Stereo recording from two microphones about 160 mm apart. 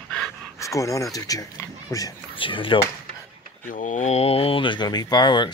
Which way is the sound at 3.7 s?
50° left (ahead or behind).